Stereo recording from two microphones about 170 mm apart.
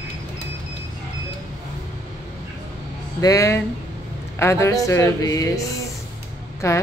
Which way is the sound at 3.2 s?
20° left (ahead or behind).